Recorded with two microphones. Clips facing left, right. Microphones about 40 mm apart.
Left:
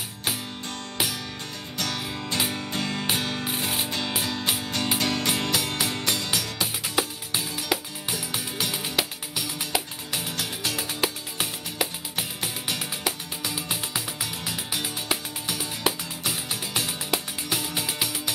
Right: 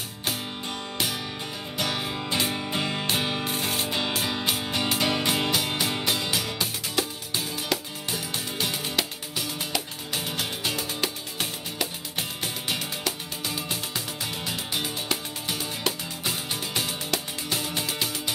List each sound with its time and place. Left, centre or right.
1.8 s music: centre
3.2 s ratchet: centre
3.4 s music: centre
4.6 s music: centre
6.6 s music: centre
10.2 s music: centre
10.8 s music: centre
13.7 s music: centre
14.5 s music: centre
15.8 s music: centre
16.3 s music: centre
17.1 s music: centre